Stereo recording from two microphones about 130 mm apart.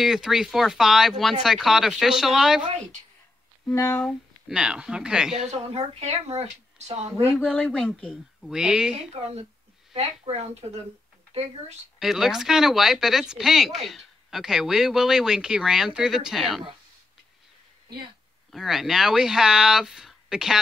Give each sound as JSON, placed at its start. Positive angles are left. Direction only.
{"t": 0.0, "sound": "speech", "side_deg": -5}
{"t": 2.6, "sound": "a woman's voice", "side_deg": -60}
{"t": 3.6, "sound": "speech", "side_deg": 20}
{"t": 4.0, "sound": "speech", "side_deg": -5}
{"t": 5.4, "sound": "speech", "side_deg": -55}
{"t": 7.3, "sound": "speech", "side_deg": 5}
{"t": 8.9, "sound": "speech", "side_deg": -50}
{"t": 12.0, "sound": "speech", "side_deg": -5}
{"t": 18.5, "sound": "speech", "side_deg": 0}